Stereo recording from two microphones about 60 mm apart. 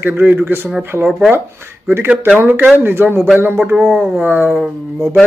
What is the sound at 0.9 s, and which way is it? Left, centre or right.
Speech, right.